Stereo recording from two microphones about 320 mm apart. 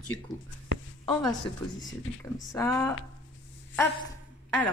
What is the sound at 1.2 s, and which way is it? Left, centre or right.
A woman's voice, centre.